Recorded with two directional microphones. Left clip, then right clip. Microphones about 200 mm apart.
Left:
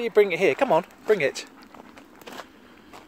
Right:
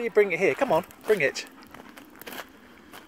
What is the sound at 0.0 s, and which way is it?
Speech, 15° left (ahead or behind).